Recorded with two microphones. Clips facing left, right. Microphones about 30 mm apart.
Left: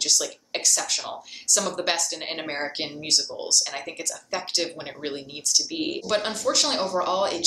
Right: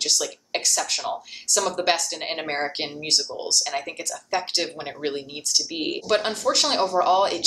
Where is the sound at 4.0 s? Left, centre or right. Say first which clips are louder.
Right 4 dB; centre.